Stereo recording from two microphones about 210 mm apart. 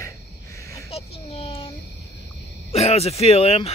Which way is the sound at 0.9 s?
25° left (ahead or behind).